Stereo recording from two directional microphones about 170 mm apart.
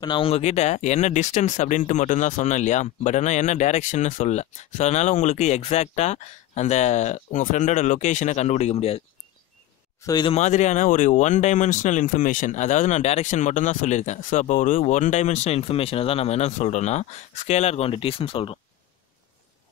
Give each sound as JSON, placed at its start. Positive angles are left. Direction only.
{"t": 0.0, "sound": "speech", "side_deg": 30}
{"t": 10.0, "sound": "speech", "side_deg": 25}
{"t": 10.3, "sound": "speech", "side_deg": 45}